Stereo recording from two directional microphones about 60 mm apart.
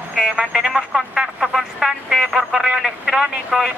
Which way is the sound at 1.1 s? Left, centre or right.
Centre.